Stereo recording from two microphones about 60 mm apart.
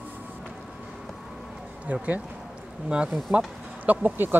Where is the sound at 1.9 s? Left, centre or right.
Right.